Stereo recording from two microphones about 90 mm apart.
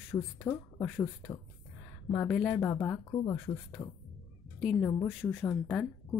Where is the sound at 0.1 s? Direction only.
30° left (ahead or behind).